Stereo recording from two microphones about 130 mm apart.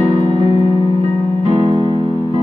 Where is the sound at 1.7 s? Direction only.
35° right (ahead or behind).